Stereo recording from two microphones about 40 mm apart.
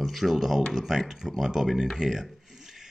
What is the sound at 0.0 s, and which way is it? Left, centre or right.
Speech, centre.